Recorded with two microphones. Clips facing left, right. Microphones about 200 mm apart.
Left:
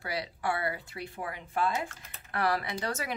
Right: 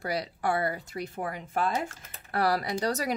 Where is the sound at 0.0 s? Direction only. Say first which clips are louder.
Right 4 dB; 40° right (ahead or behind).